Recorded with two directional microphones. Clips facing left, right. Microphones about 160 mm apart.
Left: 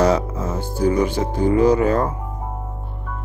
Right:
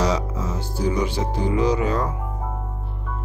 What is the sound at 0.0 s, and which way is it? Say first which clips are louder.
Speech: left 5 dB; 55° left (ahead or behind).